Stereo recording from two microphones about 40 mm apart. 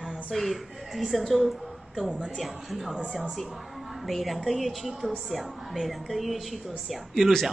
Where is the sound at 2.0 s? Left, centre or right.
Right.